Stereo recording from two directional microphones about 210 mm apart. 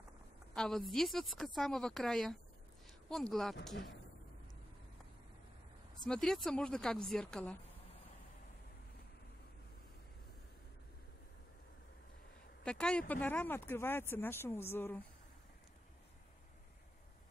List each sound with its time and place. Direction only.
0.6 s speech: centre (ahead or behind)
3.7 s speech: 50° left (ahead or behind)
6.0 s speech: 5° left (ahead or behind)
12.6 s speech: 5° left (ahead or behind)